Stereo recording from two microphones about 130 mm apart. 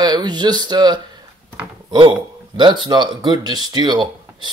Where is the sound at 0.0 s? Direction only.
35° right (ahead or behind).